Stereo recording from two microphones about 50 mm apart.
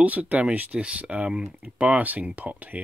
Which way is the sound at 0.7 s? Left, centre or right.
Right.